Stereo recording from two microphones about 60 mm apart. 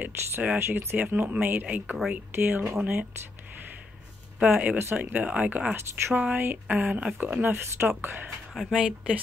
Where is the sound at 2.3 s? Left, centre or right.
Right.